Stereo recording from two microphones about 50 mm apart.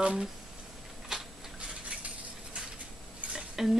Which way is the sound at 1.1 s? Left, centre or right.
Centre.